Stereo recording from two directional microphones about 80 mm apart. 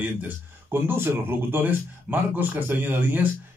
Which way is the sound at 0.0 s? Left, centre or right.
Right.